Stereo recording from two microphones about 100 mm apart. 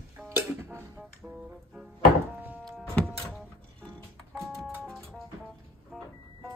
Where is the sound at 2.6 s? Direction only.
5° left (ahead or behind).